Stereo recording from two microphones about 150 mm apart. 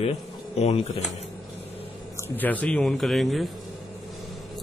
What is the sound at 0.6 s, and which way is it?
Speech, 45° left (ahead or behind).